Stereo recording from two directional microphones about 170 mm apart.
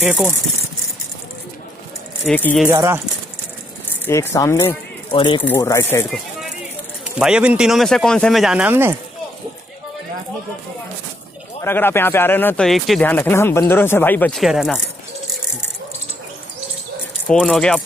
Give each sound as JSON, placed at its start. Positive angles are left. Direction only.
{"t": 0.0, "sound": "speech", "side_deg": -5}
{"t": 2.2, "sound": "speech", "side_deg": 5}
{"t": 2.6, "sound": "speech", "side_deg": -15}
{"t": 4.0, "sound": "speech", "side_deg": 15}
{"t": 4.6, "sound": "speech", "side_deg": 30}
{"t": 5.4, "sound": "speech", "side_deg": 15}
{"t": 7.2, "sound": "speech", "side_deg": -5}
{"t": 11.6, "sound": "speech", "side_deg": 15}
{"t": 12.6, "sound": "speech", "side_deg": 0}
{"t": 13.1, "sound": "speech", "side_deg": 15}
{"t": 17.3, "sound": "speech", "side_deg": 5}